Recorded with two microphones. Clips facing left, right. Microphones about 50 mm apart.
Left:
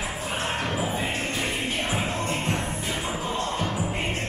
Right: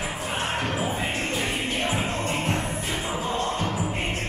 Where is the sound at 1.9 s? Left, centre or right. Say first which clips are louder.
Right 1 dB; right.